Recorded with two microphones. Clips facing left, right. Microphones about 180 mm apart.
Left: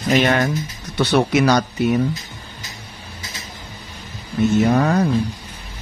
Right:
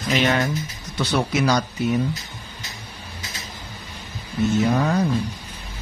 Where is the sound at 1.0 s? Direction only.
65° left (ahead or behind).